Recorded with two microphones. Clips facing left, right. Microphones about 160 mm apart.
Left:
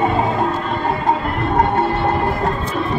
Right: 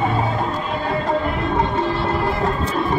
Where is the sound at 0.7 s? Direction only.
50° left (ahead or behind).